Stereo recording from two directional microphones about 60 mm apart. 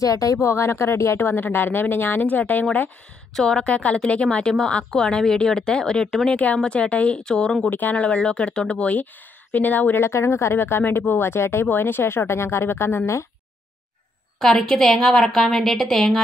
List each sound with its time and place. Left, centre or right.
0.0 s speech: left
3.3 s a woman's voice: centre
3.6 s a woman's voice: left
7.7 s speech: left
10.0 s speech: left
14.4 s a woman's voice: centre